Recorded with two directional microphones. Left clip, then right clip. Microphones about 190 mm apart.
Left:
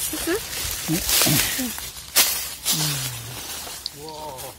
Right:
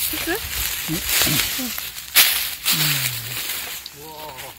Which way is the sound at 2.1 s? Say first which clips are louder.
Right 5 dB; 15° right (ahead or behind).